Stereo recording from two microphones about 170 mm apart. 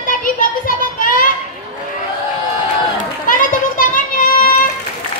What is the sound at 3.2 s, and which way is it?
Children playing, 50° left (ahead or behind).